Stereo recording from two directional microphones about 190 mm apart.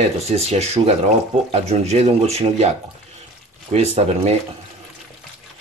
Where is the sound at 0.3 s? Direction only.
35° right (ahead or behind).